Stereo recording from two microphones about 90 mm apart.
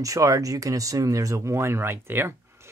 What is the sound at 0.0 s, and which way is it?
Speech, 35° right (ahead or behind).